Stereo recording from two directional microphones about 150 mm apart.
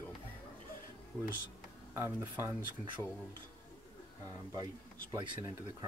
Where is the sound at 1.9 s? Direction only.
15° right (ahead or behind).